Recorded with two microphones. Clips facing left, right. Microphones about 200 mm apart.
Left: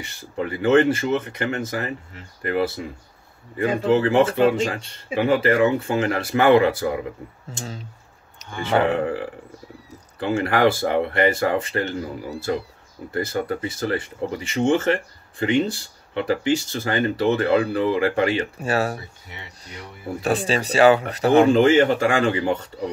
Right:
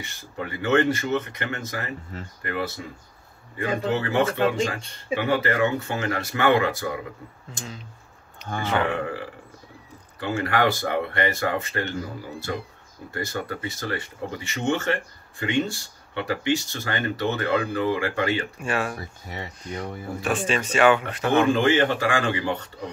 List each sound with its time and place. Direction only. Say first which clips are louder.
0.4 s speech: left 5 dB; 30° left (ahead or behind)
3.5 s speech: left 6 dB; 30° left (ahead or behind)
8.6 s speech: left 5 dB; 35° left (ahead or behind)
18.9 s speech: right 5 dB; 45° right (ahead or behind)
20.2 s speech: left 3 dB; 35° left (ahead or behind)